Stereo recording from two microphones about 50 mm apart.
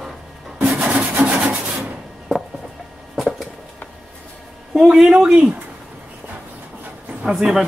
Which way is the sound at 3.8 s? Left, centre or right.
Left.